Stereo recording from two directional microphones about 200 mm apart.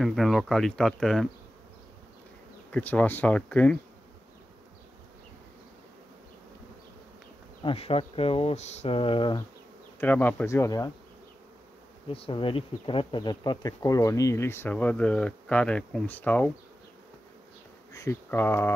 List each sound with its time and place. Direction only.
0.0 s speech: centre (ahead or behind)
2.7 s speech: 5° left (ahead or behind)
7.6 s speech: 30° left (ahead or behind)
9.9 s speech: 10° left (ahead or behind)
12.1 s speech: 25° left (ahead or behind); by 16.5 s 10° left (ahead or behind)
17.9 s speech: 15° left (ahead or behind)